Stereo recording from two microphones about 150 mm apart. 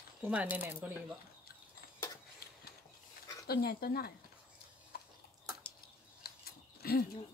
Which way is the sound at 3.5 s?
90° left.